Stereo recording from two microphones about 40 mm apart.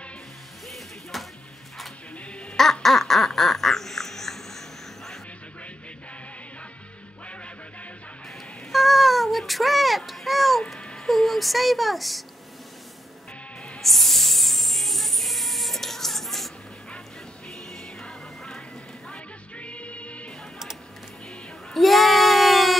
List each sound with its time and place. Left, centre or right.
0.7 s music: centre
2.5 s quack: centre
8.7 s a sound: centre
11.1 s speech: centre
13.7 s music: centre
17.5 s music: centre
19.1 s music: left
21.7 s a sound: centre